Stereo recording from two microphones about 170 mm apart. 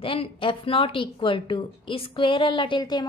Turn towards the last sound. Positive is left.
turn(degrees=25)  # may be behind; listen again after turning